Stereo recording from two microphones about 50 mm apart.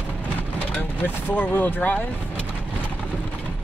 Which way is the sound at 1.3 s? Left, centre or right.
Left.